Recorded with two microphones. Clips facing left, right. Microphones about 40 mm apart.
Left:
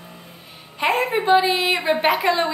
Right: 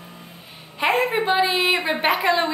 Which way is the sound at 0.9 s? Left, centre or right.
Right.